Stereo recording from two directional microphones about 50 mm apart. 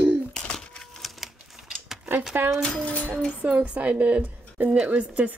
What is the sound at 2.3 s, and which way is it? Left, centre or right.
Speech, right.